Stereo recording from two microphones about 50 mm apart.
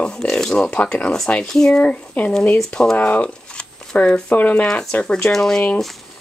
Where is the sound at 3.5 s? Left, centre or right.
Left.